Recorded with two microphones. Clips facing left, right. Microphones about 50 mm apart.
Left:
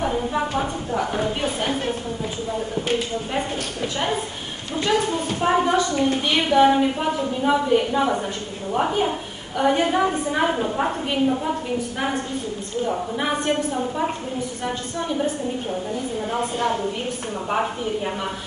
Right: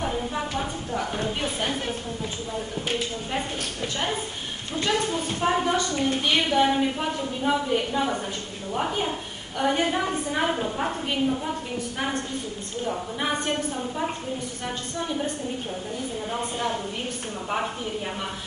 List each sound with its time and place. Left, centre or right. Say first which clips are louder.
0.0 s a sound: left 5 dB; centre
5.3 s a woman's voice: left 5 dB; centre
15.0 s a woman's voice: left 4 dB; centre